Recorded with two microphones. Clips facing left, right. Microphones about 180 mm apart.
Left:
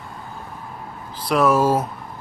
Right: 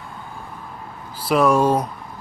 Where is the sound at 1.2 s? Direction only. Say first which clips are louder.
Right 1 dB; centre (ahead or behind).